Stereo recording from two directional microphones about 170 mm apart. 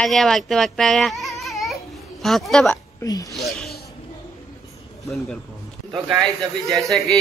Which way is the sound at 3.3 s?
Centre (ahead or behind).